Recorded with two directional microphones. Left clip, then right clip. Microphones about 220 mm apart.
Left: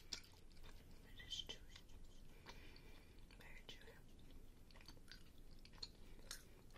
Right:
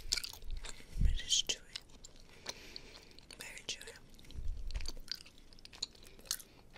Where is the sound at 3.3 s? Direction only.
30° right (ahead or behind).